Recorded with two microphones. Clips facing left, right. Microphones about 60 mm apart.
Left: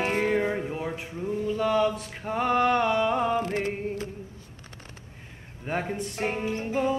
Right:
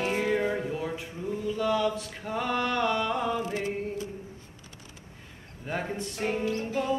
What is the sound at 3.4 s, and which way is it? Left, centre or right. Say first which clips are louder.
Mantra: left 2 dB; left.